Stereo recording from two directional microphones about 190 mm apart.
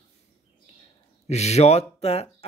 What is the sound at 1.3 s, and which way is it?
A man's voice, 35° left (ahead or behind).